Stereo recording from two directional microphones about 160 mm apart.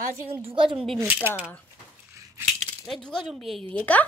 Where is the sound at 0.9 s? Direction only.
15° right (ahead or behind).